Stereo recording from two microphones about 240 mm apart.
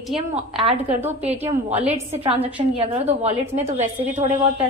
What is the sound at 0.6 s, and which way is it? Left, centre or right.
A woman's voice, right.